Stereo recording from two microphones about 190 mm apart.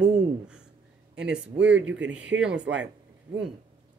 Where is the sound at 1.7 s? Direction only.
75° right (ahead or behind).